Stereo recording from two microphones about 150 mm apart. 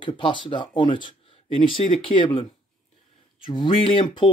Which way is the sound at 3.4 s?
35° left (ahead or behind).